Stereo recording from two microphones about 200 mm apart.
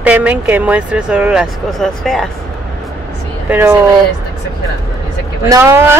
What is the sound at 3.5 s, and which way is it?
Speech, 10° right (ahead or behind).